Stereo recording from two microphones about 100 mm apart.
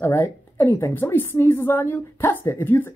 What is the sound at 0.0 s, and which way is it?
A woman's voice, 20° left (ahead or behind).